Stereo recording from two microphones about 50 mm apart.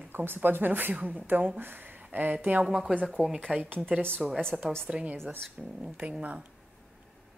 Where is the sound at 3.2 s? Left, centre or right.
Right.